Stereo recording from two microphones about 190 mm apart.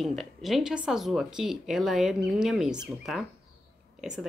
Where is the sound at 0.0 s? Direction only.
Centre (ahead or behind).